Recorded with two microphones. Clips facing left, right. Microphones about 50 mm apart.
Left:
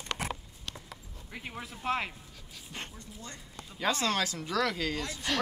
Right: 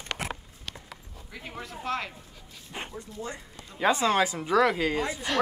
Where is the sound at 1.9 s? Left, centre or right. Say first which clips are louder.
Even; centre.